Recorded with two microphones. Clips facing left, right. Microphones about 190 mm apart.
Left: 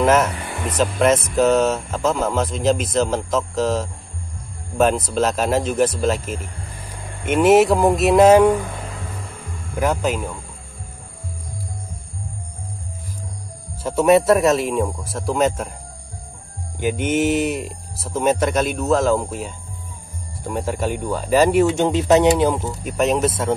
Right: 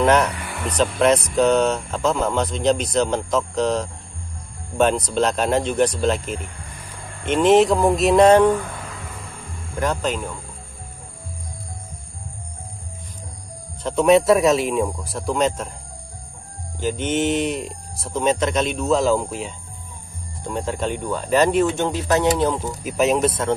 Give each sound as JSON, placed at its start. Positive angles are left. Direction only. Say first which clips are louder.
{"t": 0.0, "sound": "speech", "louder": "left 1 dB", "side_deg": 0}
{"t": 0.4, "sound": "a sound", "louder": "left 2 dB", "side_deg": 20}
{"t": 0.7, "sound": "speech", "louder": "even", "side_deg": 0}
{"t": 9.8, "sound": "speech", "louder": "left 2 dB", "side_deg": 10}
{"t": 13.8, "sound": "speech", "louder": "left 1 dB", "side_deg": 5}
{"t": 16.8, "sound": "speech", "louder": "left 2 dB", "side_deg": 10}
{"t": 22.5, "sound": "speech", "louder": "left 1 dB", "side_deg": 0}